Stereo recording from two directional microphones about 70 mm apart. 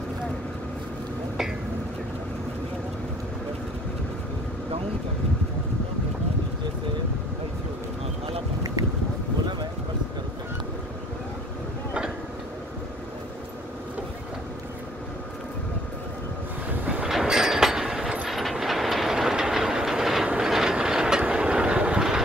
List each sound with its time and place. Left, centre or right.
16.8 s train: right
17.1 s train: centre